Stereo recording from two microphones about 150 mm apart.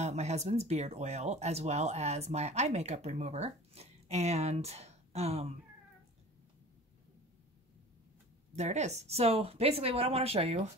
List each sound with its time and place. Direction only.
0.0 s speech: 45° right (ahead or behind)
8.5 s speech: 50° right (ahead or behind)